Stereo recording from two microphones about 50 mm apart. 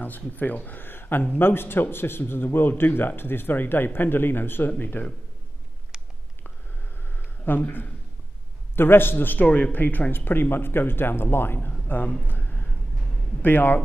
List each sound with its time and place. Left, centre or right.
0.0 s a man's voice: left
5.9 s a sound: centre
7.4 s a man's voice: left
11.9 s a man's voice: left